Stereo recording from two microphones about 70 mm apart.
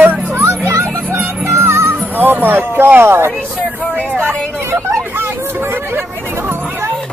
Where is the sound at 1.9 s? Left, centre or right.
Right.